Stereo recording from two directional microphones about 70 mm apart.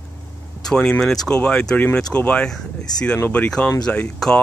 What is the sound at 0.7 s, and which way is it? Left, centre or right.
Speech, centre.